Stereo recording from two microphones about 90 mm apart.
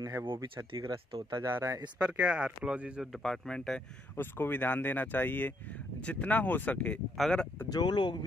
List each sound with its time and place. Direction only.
0.0 s speech: 30° right (ahead or behind)
0.7 s speech: 75° right (ahead or behind)
1.4 s speech: 35° right (ahead or behind)
2.0 s speech: 15° right (ahead or behind)
3.1 s speech: 5° left (ahead or behind)
4.2 s speech: 20° left (ahead or behind)
7.2 s speech: 5° left (ahead or behind)
7.7 s speech: 55° left (ahead or behind)